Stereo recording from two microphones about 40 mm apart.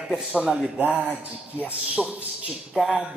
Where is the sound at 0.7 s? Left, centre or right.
Right.